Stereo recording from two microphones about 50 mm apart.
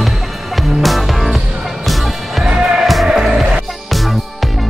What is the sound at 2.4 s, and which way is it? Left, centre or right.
Music, centre.